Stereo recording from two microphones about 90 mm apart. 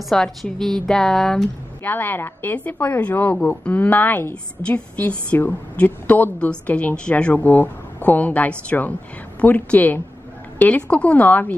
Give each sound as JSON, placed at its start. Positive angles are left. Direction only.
{"t": 0.1, "sound": "a woman's voice", "side_deg": 5}
{"t": 1.8, "sound": "a woman's voice", "side_deg": 20}